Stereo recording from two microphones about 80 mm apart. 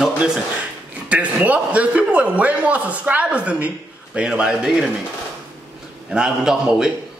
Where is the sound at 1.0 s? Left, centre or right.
Centre.